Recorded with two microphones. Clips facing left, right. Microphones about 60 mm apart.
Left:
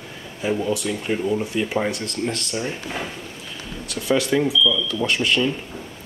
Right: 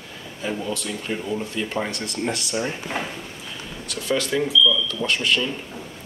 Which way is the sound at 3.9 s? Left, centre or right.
Centre.